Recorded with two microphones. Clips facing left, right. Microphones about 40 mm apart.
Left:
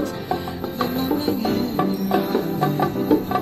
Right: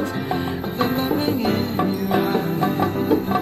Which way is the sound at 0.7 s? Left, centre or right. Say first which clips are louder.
Right 1 dB; right.